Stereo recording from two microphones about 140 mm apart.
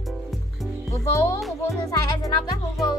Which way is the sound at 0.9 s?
20° left (ahead or behind).